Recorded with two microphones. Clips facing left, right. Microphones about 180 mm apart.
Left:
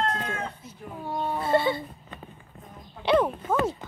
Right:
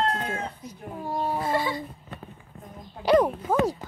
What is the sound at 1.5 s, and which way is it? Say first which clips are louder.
Speech: left 3 dB; 30° left (ahead or behind).